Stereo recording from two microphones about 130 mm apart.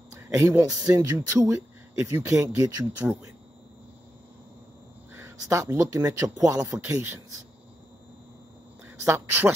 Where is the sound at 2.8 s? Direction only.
10° right (ahead or behind).